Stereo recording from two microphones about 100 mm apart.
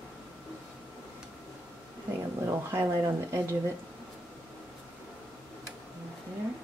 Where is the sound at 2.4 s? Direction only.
30° right (ahead or behind).